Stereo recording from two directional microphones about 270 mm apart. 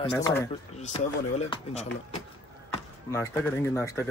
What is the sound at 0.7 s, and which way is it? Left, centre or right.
Speech, left.